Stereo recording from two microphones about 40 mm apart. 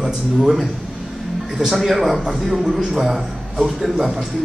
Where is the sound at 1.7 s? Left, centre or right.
Centre.